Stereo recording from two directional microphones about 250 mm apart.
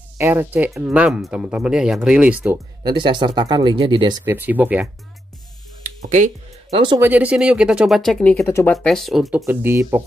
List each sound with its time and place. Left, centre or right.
0.2 s speech: centre
4.2 s speech: centre
5.9 s music: right
7.0 s speech: centre